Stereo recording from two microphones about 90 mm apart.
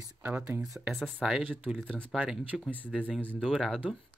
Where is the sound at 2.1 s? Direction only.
5° right (ahead or behind).